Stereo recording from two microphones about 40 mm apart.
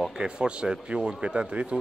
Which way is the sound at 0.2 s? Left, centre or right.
Right.